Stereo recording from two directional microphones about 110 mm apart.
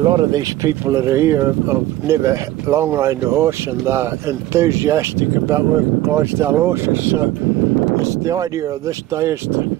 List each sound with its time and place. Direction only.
0.0 s speech: 40° right (ahead or behind); by 9.6 s 25° right (ahead or behind)